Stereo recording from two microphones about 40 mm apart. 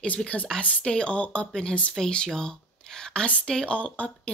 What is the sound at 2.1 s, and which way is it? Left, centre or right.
Speech, centre.